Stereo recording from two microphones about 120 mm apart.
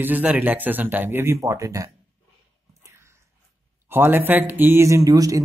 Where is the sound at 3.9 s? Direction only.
20° right (ahead or behind).